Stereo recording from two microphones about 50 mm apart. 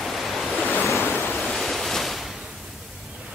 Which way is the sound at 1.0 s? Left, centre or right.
Left.